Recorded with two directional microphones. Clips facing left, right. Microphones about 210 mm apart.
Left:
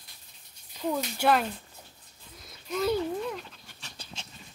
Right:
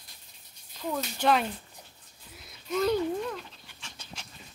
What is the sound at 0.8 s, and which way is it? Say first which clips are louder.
Speech: left 2 dB; 10° left (ahead or behind).